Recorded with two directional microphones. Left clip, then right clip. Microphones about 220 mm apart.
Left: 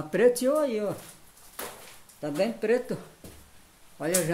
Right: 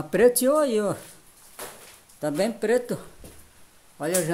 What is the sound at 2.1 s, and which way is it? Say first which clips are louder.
Speech: right 3 dB; 20° right (ahead or behind).